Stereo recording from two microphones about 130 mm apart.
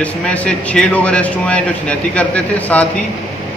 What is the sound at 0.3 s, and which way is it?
A man's voice, 10° left (ahead or behind).